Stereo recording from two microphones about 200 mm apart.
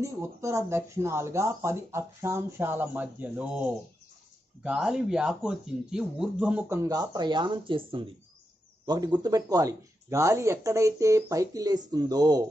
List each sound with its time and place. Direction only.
0.0 s speech: 15° right (ahead or behind)